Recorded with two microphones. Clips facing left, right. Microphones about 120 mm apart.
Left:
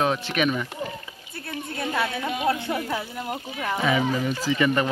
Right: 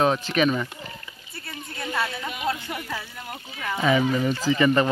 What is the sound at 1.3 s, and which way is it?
A woman's voice, 55° left (ahead or behind).